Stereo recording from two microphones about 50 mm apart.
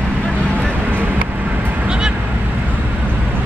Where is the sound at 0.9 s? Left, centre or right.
Right.